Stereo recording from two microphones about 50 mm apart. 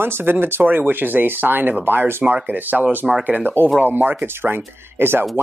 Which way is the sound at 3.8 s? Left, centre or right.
Right.